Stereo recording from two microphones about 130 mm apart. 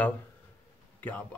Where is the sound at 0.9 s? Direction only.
15° left (ahead or behind).